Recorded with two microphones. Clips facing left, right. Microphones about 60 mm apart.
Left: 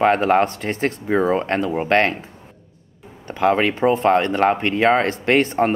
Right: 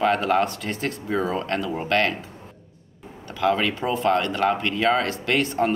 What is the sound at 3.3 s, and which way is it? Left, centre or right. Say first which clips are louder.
Speech: left 4 dB; left.